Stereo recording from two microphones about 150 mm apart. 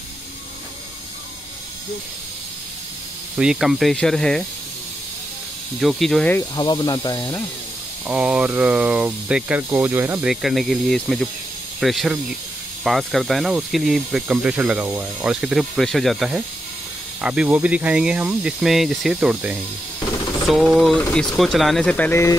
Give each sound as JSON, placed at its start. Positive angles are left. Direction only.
{"t": 3.3, "sound": "speech", "side_deg": -5}
{"t": 5.8, "sound": "speech", "side_deg": 0}
{"t": 6.5, "sound": "speech", "side_deg": 30}
{"t": 8.1, "sound": "speech", "side_deg": -5}
{"t": 10.2, "sound": "speech", "side_deg": 0}